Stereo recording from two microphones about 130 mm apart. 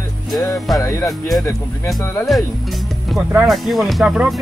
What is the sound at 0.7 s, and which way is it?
Speech, 25° left (ahead or behind).